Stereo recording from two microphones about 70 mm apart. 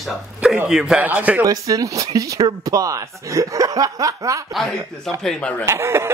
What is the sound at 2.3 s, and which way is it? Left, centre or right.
Speech, right.